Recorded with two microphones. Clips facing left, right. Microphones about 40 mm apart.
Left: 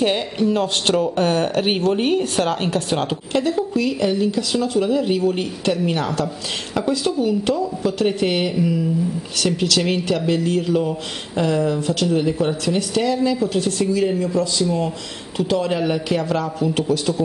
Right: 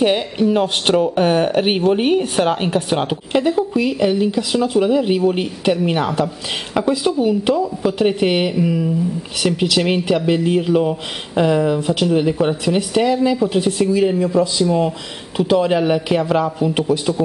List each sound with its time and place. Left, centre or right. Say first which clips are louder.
0.0 s speech: right 3 dB; centre